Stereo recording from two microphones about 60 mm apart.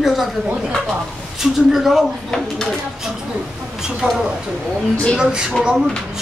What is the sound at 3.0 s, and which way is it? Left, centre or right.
Speech, centre.